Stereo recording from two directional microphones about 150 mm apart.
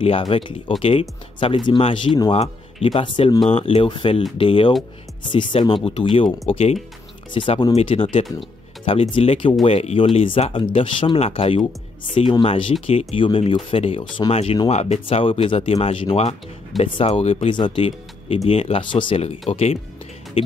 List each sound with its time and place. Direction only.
0.0 s speech: 40° left (ahead or behind)